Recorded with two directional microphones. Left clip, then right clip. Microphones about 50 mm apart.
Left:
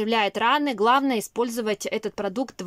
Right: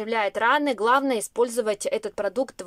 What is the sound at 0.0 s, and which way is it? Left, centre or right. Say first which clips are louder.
Speech: left 1 dB; left.